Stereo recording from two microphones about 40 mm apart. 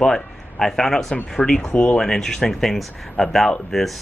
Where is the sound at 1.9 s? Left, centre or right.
Centre.